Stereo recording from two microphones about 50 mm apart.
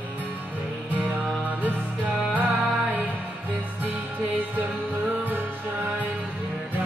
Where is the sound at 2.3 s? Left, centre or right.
Right.